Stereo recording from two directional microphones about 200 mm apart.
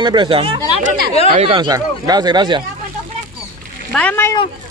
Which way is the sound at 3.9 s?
10° left (ahead or behind).